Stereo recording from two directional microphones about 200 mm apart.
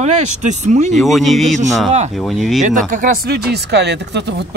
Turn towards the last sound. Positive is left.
turn(degrees=-60)  # may be behind; listen again after turning